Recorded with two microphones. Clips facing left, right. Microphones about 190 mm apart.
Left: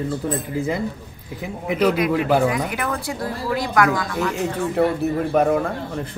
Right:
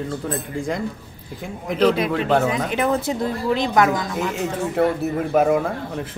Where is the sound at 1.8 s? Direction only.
25° right (ahead or behind).